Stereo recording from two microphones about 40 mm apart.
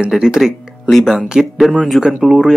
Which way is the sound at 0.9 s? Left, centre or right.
Centre.